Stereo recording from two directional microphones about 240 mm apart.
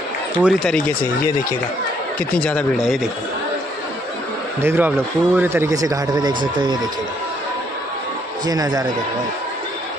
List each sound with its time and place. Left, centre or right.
0.4 s speech: centre
4.6 s speech: centre
8.5 s speech: centre